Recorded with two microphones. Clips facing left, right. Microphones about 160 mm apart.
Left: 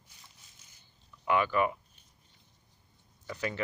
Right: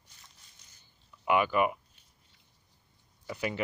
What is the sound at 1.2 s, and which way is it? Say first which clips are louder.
Speech: right 1 dB; 15° right (ahead or behind).